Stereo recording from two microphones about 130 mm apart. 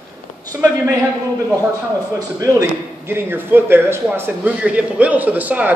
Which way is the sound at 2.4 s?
20° right (ahead or behind).